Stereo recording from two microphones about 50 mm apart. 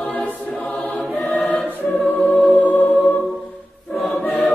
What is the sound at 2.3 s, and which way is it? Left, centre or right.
Music, left.